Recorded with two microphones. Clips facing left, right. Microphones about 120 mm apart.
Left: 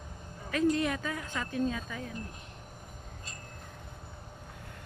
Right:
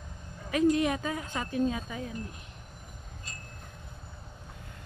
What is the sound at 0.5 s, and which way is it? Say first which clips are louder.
Speech: right 3 dB; 15° right (ahead or behind).